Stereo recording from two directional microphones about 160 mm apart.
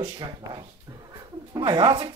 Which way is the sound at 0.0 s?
25° right (ahead or behind).